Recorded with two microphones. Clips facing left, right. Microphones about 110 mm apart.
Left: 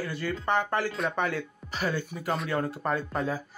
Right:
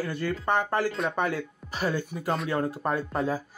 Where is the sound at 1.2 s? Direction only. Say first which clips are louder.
Right 1 dB; 10° right (ahead or behind).